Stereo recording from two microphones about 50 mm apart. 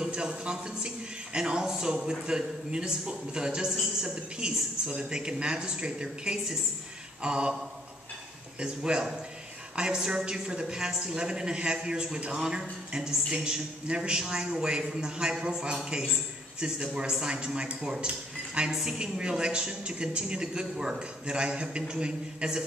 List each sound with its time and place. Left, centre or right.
0.0 s a man's voice: centre
7.2 s a man's voice: centre
8.5 s a man's voice: centre
18.0 s a sound: centre
18.7 s a man's voice: centre